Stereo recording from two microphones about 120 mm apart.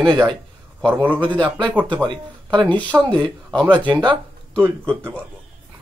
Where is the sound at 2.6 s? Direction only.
10° left (ahead or behind).